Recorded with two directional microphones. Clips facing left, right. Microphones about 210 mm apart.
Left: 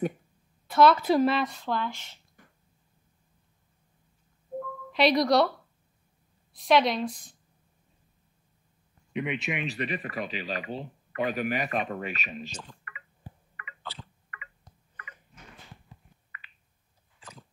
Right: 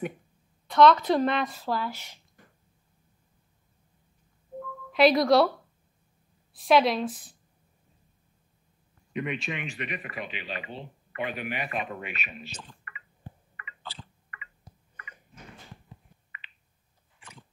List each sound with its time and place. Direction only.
0.7 s speech: 5° left (ahead or behind); by 2.1 s 10° right (ahead or behind)
4.9 s speech: centre (ahead or behind)
6.5 s speech: centre (ahead or behind)
9.1 s speech: 15° left (ahead or behind)
9.7 s speech: 35° left (ahead or behind)